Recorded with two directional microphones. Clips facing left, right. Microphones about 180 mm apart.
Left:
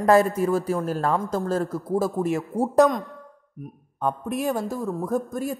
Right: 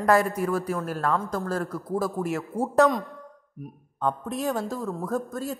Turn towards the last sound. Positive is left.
turn(degrees=15)  # may be behind; listen again after turning